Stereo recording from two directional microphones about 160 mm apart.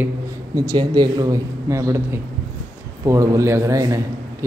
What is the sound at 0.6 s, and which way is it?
Speech, 25° right (ahead or behind).